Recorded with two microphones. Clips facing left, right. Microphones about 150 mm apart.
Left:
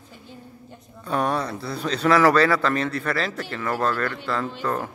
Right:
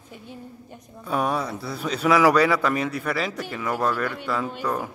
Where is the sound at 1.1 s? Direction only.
5° right (ahead or behind).